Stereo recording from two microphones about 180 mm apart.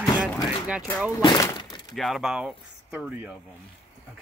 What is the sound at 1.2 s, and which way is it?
Speech, 20° left (ahead or behind).